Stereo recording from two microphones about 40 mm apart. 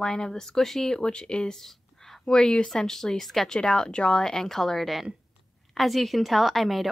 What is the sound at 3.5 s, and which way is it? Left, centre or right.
A woman's voice, centre.